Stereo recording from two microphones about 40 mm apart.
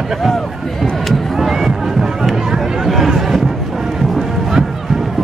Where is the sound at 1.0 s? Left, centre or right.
Centre.